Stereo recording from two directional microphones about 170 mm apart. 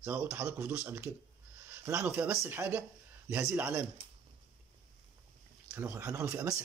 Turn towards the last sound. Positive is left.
turn(degrees=-15)  # may be behind; listen again after turning